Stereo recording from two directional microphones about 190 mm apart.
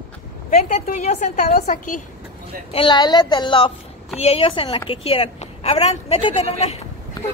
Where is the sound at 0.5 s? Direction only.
35° left (ahead or behind).